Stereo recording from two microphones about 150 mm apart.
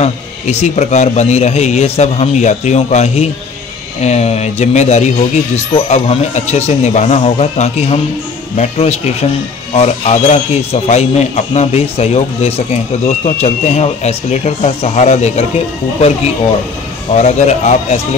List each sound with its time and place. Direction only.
0.0 s speech: 45° left (ahead or behind)
17.2 s speech: 50° left (ahead or behind)